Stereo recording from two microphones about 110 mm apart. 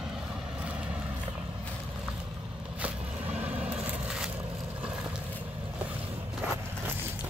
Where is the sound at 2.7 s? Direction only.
15° right (ahead or behind).